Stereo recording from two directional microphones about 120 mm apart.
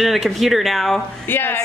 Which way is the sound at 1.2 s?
15° left (ahead or behind).